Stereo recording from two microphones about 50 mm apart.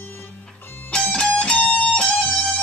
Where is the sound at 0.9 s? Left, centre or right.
Centre.